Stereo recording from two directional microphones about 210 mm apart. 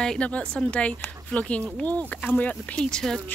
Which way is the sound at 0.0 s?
5° left (ahead or behind).